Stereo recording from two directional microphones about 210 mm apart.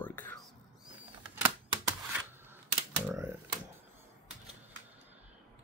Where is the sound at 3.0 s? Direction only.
10° right (ahead or behind).